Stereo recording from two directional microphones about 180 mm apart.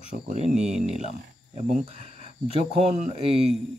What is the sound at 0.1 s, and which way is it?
Speech, 40° right (ahead or behind).